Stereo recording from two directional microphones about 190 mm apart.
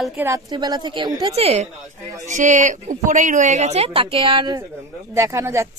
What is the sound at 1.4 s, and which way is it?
Speech, 35° right (ahead or behind).